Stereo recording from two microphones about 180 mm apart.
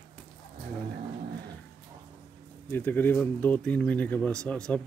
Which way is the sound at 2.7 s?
10° left (ahead or behind).